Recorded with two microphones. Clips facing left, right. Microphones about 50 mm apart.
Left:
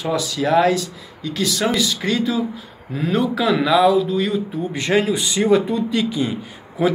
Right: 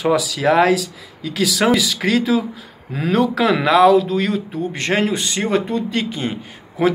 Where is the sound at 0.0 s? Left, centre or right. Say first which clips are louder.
Right 4 dB; right.